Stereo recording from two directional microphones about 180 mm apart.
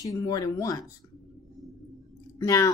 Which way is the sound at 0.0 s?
20° left (ahead or behind).